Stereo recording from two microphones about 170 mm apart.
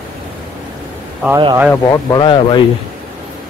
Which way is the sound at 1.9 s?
25° left (ahead or behind).